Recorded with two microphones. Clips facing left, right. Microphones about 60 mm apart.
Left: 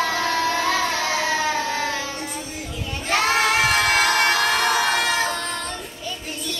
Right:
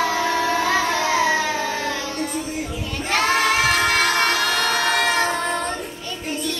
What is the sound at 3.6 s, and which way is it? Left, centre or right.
Train, centre.